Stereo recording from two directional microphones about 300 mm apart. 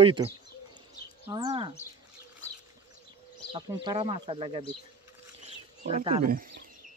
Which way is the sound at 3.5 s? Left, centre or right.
Centre.